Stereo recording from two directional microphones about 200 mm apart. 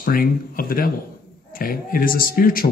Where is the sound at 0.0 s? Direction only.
45° left (ahead or behind).